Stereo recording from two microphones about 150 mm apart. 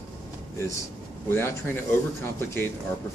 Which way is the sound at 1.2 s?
15° left (ahead or behind).